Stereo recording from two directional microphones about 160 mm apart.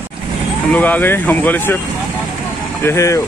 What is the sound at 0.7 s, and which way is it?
Speech, 10° left (ahead or behind).